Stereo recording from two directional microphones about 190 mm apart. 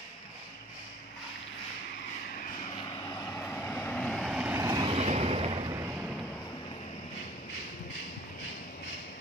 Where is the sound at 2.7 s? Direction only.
20° left (ahead or behind).